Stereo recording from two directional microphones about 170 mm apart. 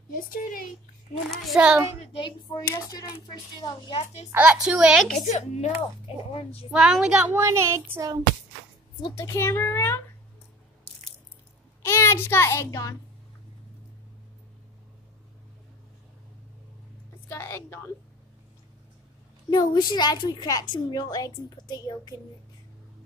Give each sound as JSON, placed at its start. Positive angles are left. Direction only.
{"t": 0.1, "sound": "speech", "side_deg": 55}
{"t": 1.3, "sound": "a woman's voice", "side_deg": 0}
{"t": 2.0, "sound": "a woman's voice", "side_deg": 30}
{"t": 4.0, "sound": "speech", "side_deg": 40}
{"t": 4.3, "sound": "a woman's voice", "side_deg": -5}
{"t": 5.1, "sound": "speech", "side_deg": 45}
{"t": 6.7, "sound": "a child's voice", "side_deg": -5}
{"t": 9.1, "sound": "a child's voice", "side_deg": 15}
{"t": 11.8, "sound": "a child's voice", "side_deg": 15}
{"t": 17.3, "sound": "a child's voice", "side_deg": 15}
{"t": 19.5, "sound": "a woman's voice", "side_deg": 25}